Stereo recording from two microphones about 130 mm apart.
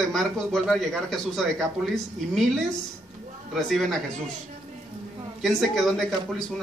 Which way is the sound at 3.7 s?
Centre (ahead or behind).